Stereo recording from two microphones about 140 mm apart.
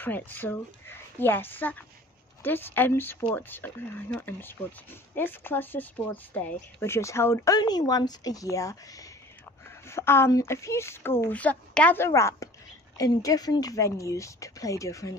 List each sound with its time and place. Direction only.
0.0 s a woman's voice: 15° left (ahead or behind)